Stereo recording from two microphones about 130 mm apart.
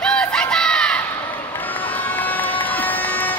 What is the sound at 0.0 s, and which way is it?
Crowd, 5° left (ahead or behind).